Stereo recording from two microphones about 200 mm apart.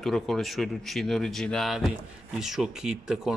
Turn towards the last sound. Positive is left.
turn(degrees=-5)  # may be behind; listen again after turning